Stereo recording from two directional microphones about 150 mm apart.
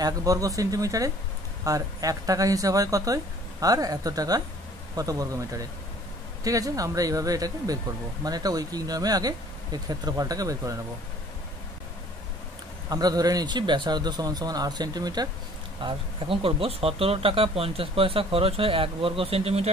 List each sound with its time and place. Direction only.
0.0 s speech: 25° right (ahead or behind)
12.9 s speech: 25° right (ahead or behind)
15.8 s speech: 35° right (ahead or behind)